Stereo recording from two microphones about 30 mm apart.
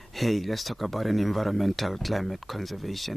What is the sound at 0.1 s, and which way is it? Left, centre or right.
Speech, centre.